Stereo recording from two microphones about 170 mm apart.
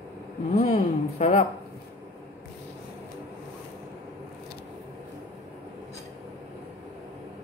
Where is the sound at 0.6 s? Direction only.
40° left (ahead or behind).